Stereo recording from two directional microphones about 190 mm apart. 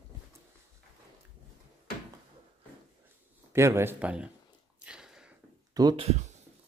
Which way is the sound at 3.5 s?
15° right (ahead or behind).